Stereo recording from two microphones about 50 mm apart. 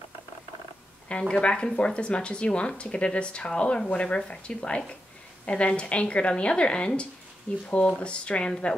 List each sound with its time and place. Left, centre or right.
1.3 s speech: centre